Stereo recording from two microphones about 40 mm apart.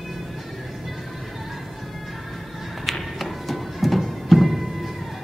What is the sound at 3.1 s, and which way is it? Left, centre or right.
Music, centre.